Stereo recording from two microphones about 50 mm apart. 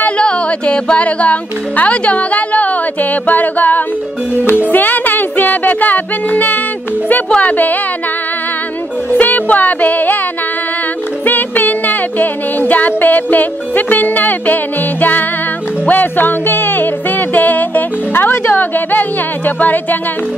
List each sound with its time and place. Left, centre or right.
0.2 s speech: left
4.6 s music: left
7.4 s speech: left
9.1 s music: left
11.2 s music: left